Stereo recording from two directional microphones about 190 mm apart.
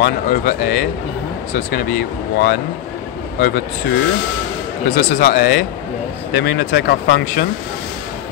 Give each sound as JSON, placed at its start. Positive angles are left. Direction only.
{"t": 0.0, "sound": "a man's voice", "side_deg": 50}